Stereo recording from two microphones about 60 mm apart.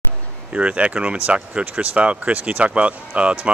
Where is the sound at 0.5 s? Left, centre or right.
Right.